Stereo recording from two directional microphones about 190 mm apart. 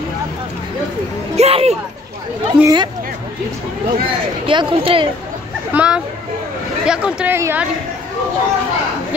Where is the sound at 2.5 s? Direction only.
5° right (ahead or behind).